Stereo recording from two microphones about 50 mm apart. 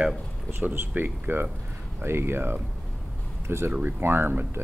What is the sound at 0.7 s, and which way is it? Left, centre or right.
Speech, right.